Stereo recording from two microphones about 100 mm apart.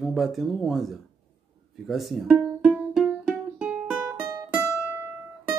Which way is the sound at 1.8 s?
Centre (ahead or behind).